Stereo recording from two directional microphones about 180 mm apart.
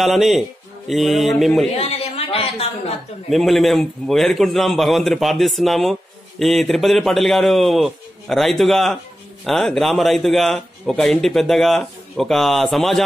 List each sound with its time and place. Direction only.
0.0 s a man's voice: centre (ahead or behind)
1.8 s a sound: 35° left (ahead or behind)
3.3 s a man's voice: centre (ahead or behind)